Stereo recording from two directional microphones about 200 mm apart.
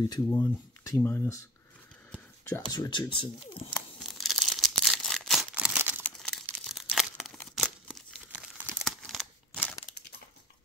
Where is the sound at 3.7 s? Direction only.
Centre (ahead or behind).